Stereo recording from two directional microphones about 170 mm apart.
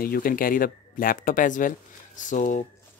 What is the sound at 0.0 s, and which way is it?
Speech, 60° left (ahead or behind).